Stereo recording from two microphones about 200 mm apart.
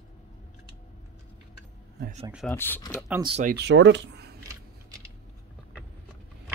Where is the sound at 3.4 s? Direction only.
55° right (ahead or behind).